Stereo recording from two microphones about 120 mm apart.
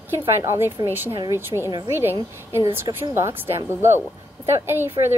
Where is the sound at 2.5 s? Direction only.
20° right (ahead or behind).